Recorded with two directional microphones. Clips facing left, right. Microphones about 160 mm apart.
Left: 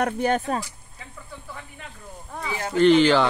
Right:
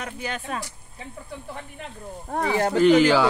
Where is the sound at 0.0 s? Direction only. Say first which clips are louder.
Left 10 dB; 50° left (ahead or behind).